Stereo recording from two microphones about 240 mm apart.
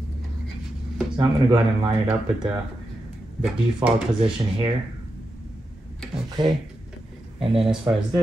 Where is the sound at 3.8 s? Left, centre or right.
Centre.